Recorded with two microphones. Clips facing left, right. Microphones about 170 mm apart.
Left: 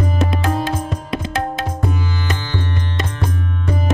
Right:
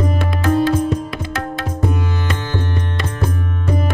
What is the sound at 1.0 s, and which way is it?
Tabla, 20° left (ahead or behind).